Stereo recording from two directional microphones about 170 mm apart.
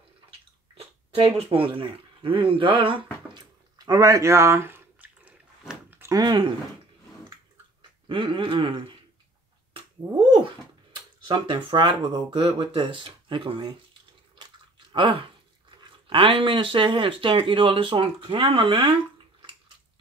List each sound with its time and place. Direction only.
0.3 s speech: 35° right (ahead or behind)
3.3 s drip: 25° right (ahead or behind)
8.1 s a sound: 30° right (ahead or behind)
11.2 s speech: 25° right (ahead or behind)
14.3 s chewing: 30° right (ahead or behind)
15.8 s speech: 30° right (ahead or behind)